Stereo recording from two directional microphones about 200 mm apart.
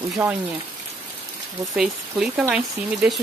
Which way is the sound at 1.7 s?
5° right (ahead or behind).